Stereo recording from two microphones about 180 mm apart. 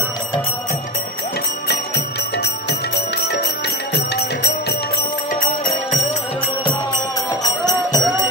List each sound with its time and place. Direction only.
3.2 s bell: 65° left (ahead or behind)
3.9 s music: 70° left (ahead or behind)
7.4 s music: 20° left (ahead or behind)